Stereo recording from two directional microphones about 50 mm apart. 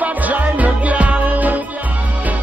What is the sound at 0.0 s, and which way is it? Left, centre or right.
Music, right.